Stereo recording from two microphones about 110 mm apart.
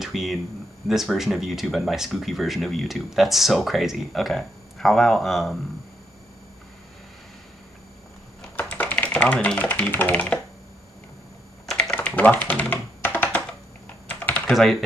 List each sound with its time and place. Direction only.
0.0 s speech: centre (ahead or behind)
8.5 s speech: 15° left (ahead or behind)
11.6 s typing: 10° left (ahead or behind)
12.7 s computer keyboard: 20° left (ahead or behind)
14.0 s typing: 10° left (ahead or behind)
14.5 s speech: 5° left (ahead or behind)